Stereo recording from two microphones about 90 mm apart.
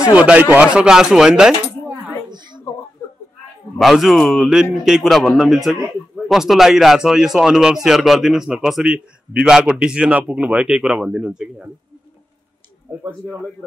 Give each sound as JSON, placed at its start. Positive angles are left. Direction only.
{"t": 0.1, "sound": "a man's voice", "side_deg": -15}
{"t": 2.2, "sound": "a sound", "side_deg": -55}
{"t": 3.7, "sound": "a man's voice", "side_deg": 0}